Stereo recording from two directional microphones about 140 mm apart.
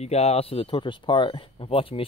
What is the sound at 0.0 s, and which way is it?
Speech, 50° left (ahead or behind).